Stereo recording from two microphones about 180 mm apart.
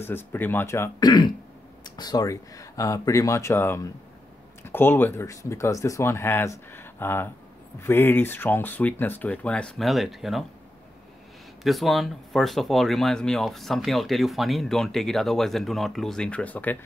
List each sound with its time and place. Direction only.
0.0 s speech: 10° left (ahead or behind)
11.6 s speech: centre (ahead or behind)